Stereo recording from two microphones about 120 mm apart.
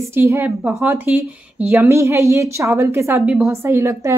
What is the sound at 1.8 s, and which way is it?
A woman's voice, 25° right (ahead or behind).